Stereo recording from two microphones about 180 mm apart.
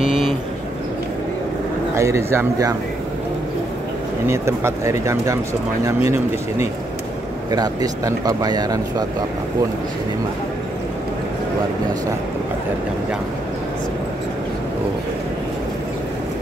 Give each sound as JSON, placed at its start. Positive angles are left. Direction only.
{"t": 2.0, "sound": "speech", "side_deg": -15}
{"t": 4.3, "sound": "speech", "side_deg": -15}